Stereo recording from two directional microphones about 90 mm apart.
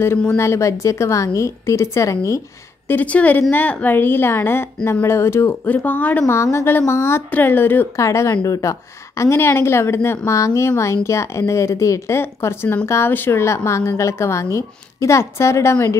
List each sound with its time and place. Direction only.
0.4 s a woman's voice: 35° left (ahead or behind)
2.9 s a woman's voice: 20° left (ahead or behind)
6.3 s a woman's voice: 30° left (ahead or behind)
7.9 s a woman's voice: 35° left (ahead or behind)